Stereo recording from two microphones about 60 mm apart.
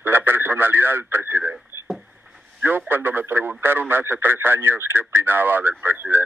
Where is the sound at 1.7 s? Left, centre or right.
Right.